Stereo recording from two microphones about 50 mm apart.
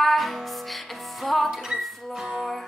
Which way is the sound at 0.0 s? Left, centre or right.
Centre.